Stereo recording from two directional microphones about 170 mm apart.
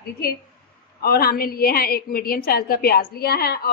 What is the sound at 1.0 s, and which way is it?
A woman's voice, 65° left (ahead or behind).